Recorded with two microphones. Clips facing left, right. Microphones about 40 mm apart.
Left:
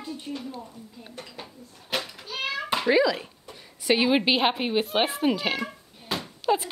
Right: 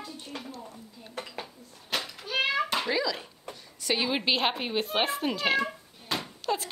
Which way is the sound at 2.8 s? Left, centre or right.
Centre.